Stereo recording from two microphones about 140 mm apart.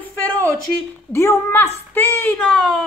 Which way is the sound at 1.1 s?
15° left (ahead or behind).